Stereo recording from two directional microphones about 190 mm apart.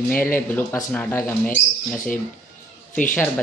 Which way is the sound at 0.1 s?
10° left (ahead or behind).